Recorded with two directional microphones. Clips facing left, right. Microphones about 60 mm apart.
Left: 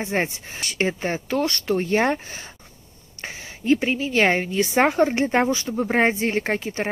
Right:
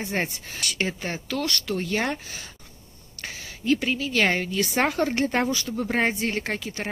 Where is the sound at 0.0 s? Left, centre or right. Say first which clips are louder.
Left 4 dB; left.